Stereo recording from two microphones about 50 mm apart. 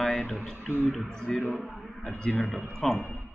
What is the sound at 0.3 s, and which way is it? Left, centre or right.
Speech, centre.